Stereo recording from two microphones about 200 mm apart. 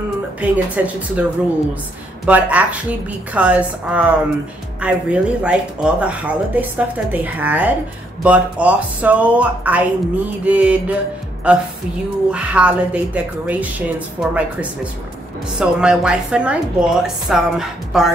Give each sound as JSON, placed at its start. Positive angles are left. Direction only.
{"t": 0.4, "sound": "speech", "side_deg": -5}
{"t": 2.2, "sound": "a woman's voice", "side_deg": -5}